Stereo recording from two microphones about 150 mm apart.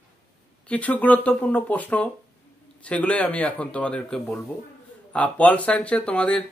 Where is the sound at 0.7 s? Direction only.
10° left (ahead or behind).